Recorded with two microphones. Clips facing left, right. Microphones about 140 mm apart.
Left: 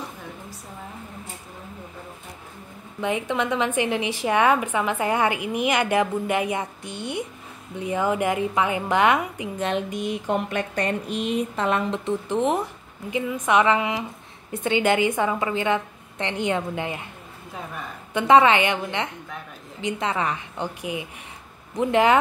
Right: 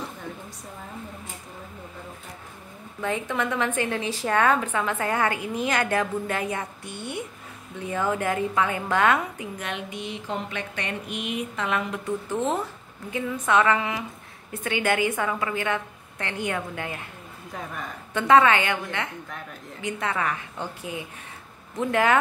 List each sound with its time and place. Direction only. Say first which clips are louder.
3.0 s a woman's voice: left 3 dB; 20° left (ahead or behind)
9.8 s a woman's voice: left 6 dB; 50° left (ahead or behind); by 17.0 s 20° left (ahead or behind)
18.1 s a woman's voice: left 2 dB; 20° left (ahead or behind)